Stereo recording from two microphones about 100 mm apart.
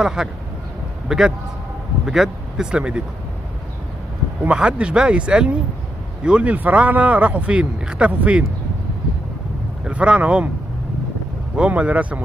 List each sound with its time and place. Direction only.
0.0 s a man's voice: 5° right (ahead or behind)
4.4 s speech: 10° right (ahead or behind)
9.8 s speech: 10° right (ahead or behind)
11.5 s speech: 10° right (ahead or behind)